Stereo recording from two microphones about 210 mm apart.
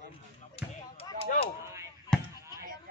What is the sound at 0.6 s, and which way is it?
Basketball bounce, 25° left (ahead or behind).